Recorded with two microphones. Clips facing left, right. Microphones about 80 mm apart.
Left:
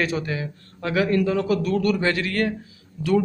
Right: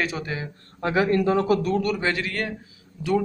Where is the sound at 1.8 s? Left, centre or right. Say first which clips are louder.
Left 3 dB; centre.